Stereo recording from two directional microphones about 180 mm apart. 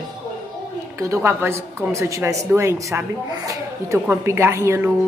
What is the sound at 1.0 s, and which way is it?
Speech, 15° right (ahead or behind).